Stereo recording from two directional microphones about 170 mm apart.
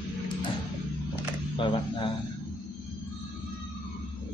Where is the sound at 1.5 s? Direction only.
30° left (ahead or behind).